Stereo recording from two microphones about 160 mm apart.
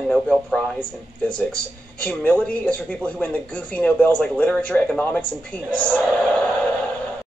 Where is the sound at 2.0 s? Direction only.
10° left (ahead or behind).